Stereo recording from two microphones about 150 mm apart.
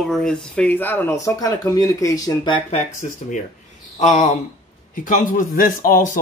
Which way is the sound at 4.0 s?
55° left (ahead or behind).